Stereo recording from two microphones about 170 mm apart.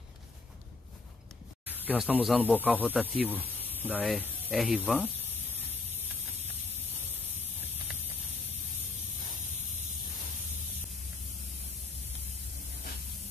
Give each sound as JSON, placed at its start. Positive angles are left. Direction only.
{"t": 1.7, "sound": "speech", "side_deg": -10}